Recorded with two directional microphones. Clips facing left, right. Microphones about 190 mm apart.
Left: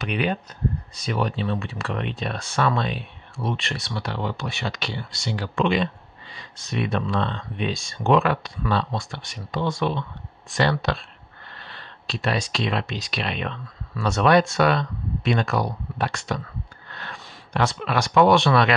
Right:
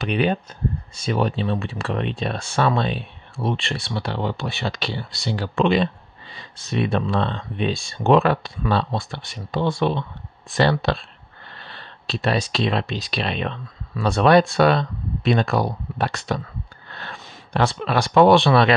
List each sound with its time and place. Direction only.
0.0 s speech: 30° right (ahead or behind)